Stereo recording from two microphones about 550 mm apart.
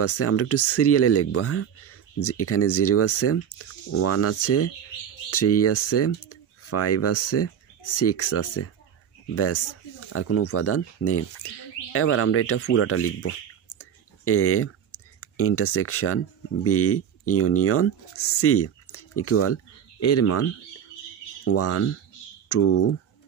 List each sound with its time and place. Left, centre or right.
0.0 s speech: left